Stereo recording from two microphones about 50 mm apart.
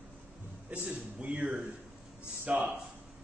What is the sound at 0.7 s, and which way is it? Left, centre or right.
A man's voice, right.